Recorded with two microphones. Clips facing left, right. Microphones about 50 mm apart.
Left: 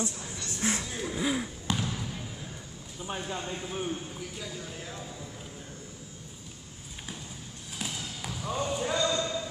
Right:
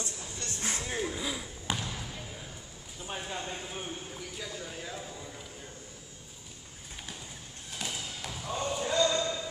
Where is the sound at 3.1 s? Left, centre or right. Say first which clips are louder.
Left 1 dB; centre.